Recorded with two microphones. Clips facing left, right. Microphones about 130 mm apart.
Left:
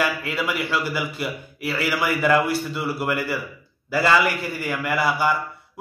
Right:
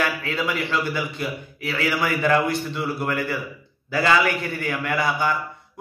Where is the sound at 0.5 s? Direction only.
10° left (ahead or behind).